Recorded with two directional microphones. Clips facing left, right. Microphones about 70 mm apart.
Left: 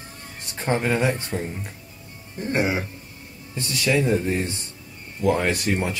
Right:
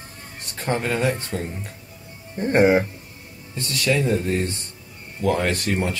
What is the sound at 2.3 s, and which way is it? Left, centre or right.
Speech, right.